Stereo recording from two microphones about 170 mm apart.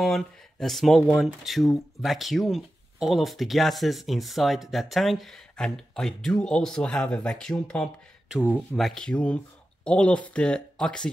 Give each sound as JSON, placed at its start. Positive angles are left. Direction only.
{"t": 0.0, "sound": "speech", "side_deg": 0}